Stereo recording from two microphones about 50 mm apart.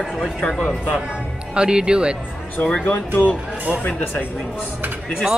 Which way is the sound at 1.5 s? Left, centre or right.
Centre.